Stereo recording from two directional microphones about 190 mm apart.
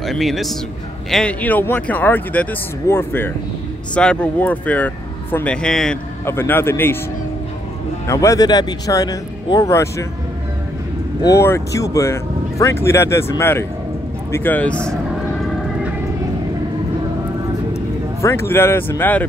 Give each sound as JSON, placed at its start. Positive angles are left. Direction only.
{"t": 0.0, "sound": "a man's voice", "side_deg": 0}
{"t": 8.1, "sound": "speech", "side_deg": 15}
{"t": 11.2, "sound": "speech", "side_deg": 15}
{"t": 18.2, "sound": "speech", "side_deg": 15}